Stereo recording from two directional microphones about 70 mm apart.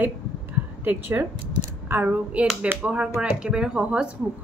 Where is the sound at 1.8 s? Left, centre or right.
Right.